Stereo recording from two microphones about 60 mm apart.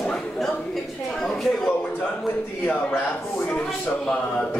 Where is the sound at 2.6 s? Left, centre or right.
Left.